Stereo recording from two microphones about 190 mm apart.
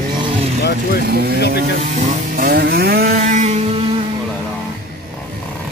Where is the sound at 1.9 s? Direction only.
50° right (ahead or behind).